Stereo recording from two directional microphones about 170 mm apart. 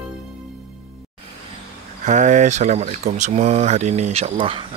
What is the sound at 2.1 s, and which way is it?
Speech, 45° right (ahead or behind).